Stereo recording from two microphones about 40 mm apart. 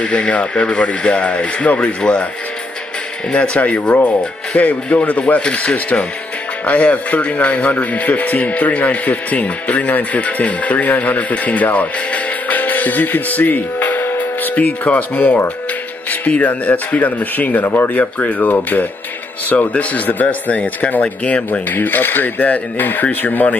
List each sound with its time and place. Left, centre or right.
0.0 s speech: left
3.3 s speech: left
5.4 s speech: left
14.5 s speech: left
18.2 s speech: left
19.7 s speech: left
21.5 s speech: left